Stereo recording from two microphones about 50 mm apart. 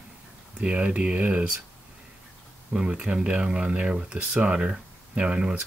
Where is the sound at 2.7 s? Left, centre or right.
Right.